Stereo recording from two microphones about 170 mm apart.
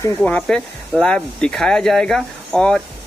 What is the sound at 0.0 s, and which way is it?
Speech, 10° left (ahead or behind).